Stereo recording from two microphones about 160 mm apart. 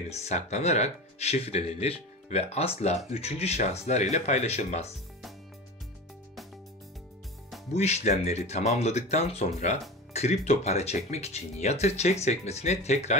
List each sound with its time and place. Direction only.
0.1 s speech: 45° left (ahead or behind)
7.7 s speech: 45° left (ahead or behind)